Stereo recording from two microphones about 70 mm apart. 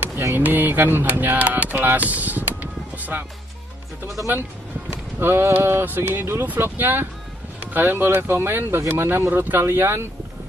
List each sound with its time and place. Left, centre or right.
0.4 s speech: right
4.9 s speech: right